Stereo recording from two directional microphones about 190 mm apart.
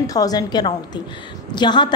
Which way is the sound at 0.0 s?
20° left (ahead or behind).